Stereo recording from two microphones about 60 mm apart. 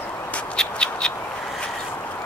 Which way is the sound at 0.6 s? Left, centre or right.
Centre.